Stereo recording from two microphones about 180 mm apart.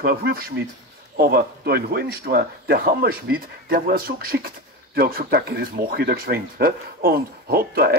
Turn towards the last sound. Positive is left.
turn(degrees=-55)  # may be behind; listen again after turning